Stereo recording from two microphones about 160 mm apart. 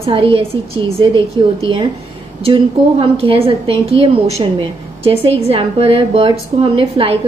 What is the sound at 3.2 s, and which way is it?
A woman's voice, 35° right (ahead or behind).